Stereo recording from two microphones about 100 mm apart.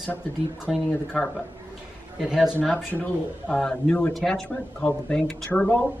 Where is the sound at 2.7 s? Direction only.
15° left (ahead or behind).